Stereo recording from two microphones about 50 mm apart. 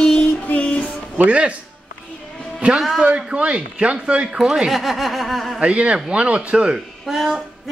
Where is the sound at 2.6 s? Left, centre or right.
Right.